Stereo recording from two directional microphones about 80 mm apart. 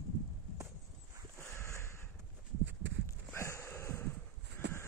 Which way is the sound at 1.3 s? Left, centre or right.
Left.